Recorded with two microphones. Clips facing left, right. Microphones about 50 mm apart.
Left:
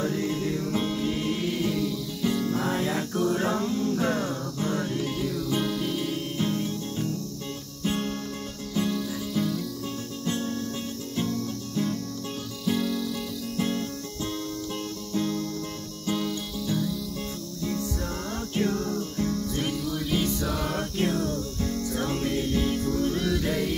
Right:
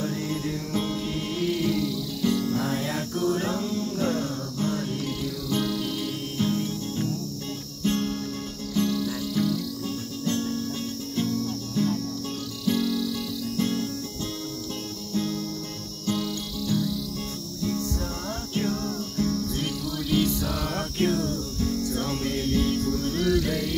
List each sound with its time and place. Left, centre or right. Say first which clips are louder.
0.3 s music: left 1 dB; centre
1.6 s music: right 1 dB; centre
7.8 s guitar: right 2 dB; centre
8.7 s music: right 2 dB; centre
11.1 s cricket: right 2 dB; centre
12.6 s music: right 2 dB; centre
13.6 s music: right 1 dB; centre
15.1 s music: left 1 dB; centre
23.5 s music: even; centre